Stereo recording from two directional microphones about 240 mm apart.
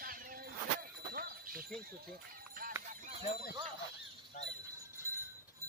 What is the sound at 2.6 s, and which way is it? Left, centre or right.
Honk, right.